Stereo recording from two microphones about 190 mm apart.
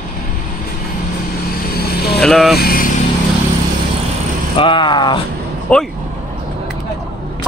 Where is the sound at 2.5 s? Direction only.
50° left (ahead or behind).